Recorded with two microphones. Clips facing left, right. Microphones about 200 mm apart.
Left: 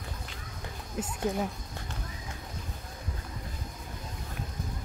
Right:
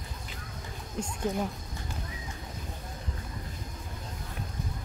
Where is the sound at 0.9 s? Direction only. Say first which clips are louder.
Even; 5° left (ahead or behind).